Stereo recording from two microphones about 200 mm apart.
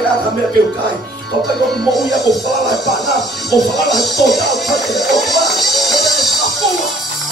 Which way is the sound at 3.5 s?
Centre (ahead or behind).